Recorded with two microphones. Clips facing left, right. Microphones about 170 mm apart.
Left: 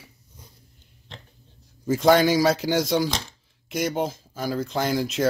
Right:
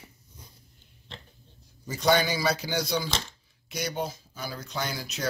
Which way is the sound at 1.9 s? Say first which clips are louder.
Left 7 dB; 90° left.